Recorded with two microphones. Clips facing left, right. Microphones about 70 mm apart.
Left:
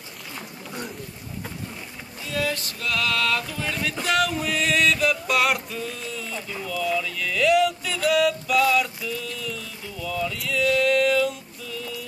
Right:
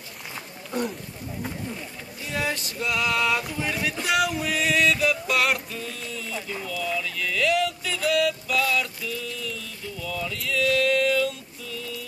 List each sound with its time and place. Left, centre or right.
0.7 s a sound: centre
2.3 s male singing: right
3.9 s music: centre